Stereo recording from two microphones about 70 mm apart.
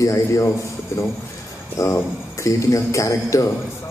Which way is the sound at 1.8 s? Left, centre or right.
Left.